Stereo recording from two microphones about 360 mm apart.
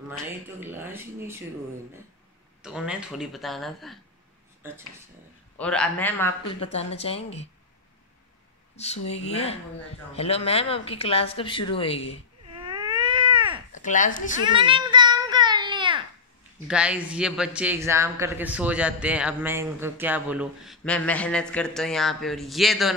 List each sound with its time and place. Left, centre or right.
0.1 s a man's voice: centre
2.6 s a man's voice: centre
5.6 s a man's voice: centre
6.6 s speech: centre
8.7 s speech: centre
12.6 s baby cry: centre
13.7 s speech: left
14.5 s baby cry: centre
16.6 s a man's voice: centre